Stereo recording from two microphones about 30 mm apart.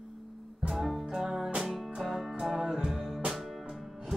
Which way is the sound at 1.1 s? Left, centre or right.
Centre.